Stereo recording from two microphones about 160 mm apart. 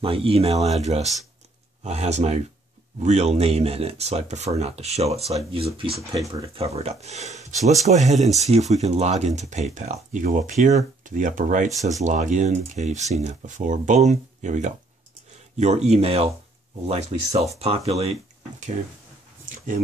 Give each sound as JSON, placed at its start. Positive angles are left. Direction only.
{"t": 0.0, "sound": "speech", "side_deg": -35}